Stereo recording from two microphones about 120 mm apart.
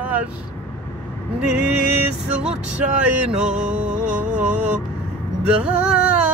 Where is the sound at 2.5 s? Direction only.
10° right (ahead or behind).